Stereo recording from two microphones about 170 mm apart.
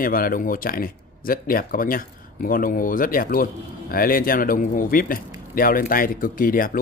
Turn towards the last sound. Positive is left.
turn(degrees=55)  # may be behind; listen again after turning